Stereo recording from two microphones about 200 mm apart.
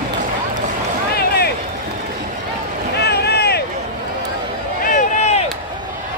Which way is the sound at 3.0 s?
55° left (ahead or behind).